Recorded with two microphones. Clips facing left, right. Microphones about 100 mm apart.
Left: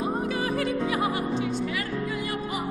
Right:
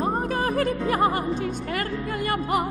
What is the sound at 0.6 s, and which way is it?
Music, 45° right (ahead or behind).